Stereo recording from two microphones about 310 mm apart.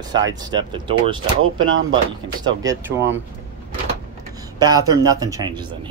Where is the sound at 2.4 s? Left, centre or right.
Centre.